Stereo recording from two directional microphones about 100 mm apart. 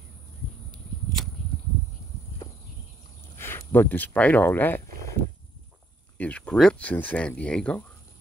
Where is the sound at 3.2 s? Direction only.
25° left (ahead or behind).